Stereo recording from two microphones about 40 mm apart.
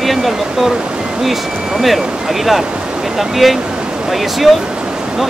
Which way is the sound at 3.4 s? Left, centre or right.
Centre.